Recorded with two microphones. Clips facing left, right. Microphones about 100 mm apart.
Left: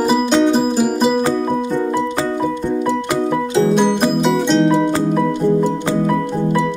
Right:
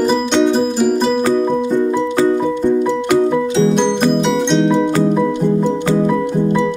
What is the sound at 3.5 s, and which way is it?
Music, 10° left (ahead or behind).